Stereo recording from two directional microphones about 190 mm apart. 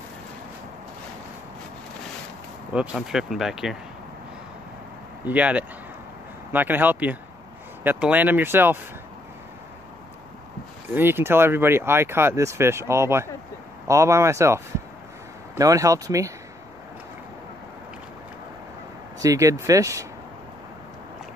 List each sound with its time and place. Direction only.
2.7 s speech: 5° right (ahead or behind)
5.2 s speech: 5° right (ahead or behind)
10.9 s speech: 10° right (ahead or behind)
19.1 s speech: 15° right (ahead or behind)